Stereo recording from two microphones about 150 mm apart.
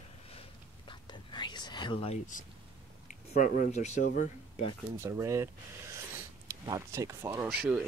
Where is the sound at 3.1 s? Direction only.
60° left (ahead or behind).